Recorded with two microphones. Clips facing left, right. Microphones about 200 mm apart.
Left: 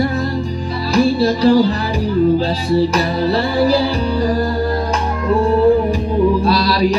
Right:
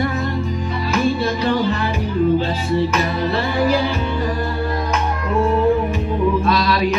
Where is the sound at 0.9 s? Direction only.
35° left (ahead or behind).